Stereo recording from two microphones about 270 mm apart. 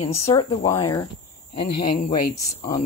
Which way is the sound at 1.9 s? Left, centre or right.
Left.